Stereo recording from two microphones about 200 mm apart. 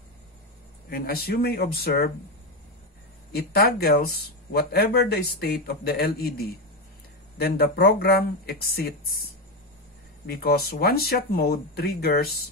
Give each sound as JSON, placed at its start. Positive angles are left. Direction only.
{"t": 0.8, "sound": "speech", "side_deg": 50}
{"t": 3.3, "sound": "speech", "side_deg": 50}